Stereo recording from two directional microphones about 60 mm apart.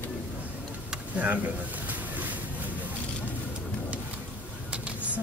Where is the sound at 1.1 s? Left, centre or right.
Right.